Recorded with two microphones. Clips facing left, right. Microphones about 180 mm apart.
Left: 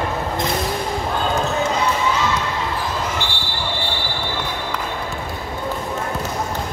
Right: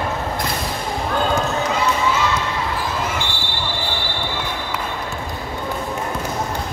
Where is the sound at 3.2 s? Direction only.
35° left (ahead or behind).